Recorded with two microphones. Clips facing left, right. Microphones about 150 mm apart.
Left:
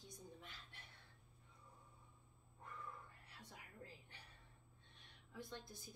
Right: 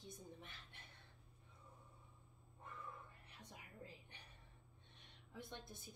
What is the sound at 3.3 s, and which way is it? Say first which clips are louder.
Music: even; 20° right (ahead or behind).